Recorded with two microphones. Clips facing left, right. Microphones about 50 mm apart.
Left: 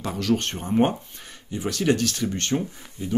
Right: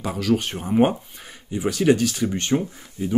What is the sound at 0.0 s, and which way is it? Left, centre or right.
Speech, centre.